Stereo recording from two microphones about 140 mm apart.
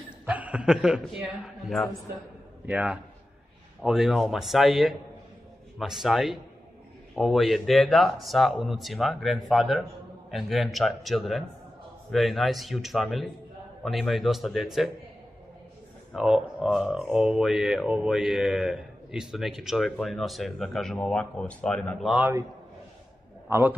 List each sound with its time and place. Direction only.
0.3 s a man's voice: 10° right (ahead or behind)
16.1 s speech: 5° right (ahead or behind)
23.5 s a man's voice: 15° right (ahead or behind)